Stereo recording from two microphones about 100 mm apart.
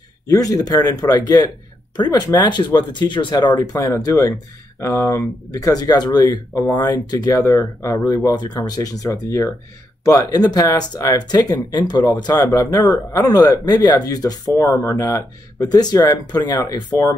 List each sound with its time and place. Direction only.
0.3 s speech: 35° left (ahead or behind)
7.3 s speech: 30° left (ahead or behind)